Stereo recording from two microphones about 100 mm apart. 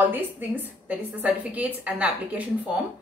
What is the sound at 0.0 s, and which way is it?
A woman's voice, 20° right (ahead or behind).